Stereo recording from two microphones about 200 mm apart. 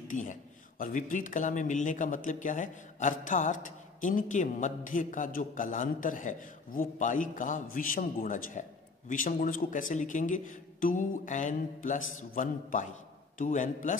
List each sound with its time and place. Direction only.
0.1 s speech: 40° left (ahead or behind)